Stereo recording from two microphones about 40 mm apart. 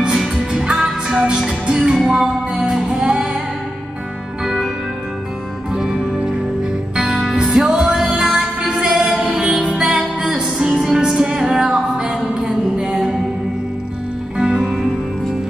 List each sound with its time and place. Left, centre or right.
0.5 s music: centre
5.7 s music: centre
7.4 s music: centre
14.3 s music: right